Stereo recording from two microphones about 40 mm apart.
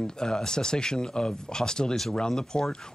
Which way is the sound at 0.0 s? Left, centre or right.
Centre.